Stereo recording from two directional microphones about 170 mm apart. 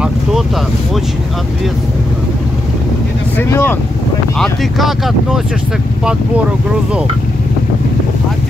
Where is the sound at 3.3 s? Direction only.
15° left (ahead or behind).